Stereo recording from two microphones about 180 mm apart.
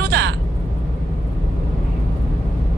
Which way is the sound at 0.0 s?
70° right (ahead or behind).